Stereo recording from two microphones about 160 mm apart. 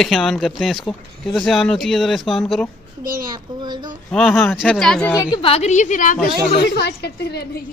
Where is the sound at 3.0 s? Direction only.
60° right (ahead or behind).